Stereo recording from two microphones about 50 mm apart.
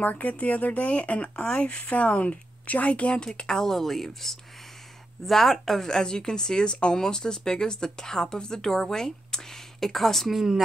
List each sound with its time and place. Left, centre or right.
0.0 s speech: left
3.3 s speech: centre